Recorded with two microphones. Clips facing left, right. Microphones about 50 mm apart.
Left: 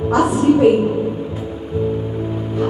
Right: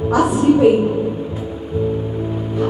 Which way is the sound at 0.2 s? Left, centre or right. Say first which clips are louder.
Even; centre.